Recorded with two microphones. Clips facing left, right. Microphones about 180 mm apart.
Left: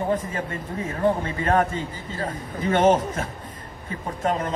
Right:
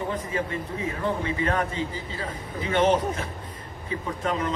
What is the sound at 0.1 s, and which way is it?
A man's voice, 45° left (ahead or behind).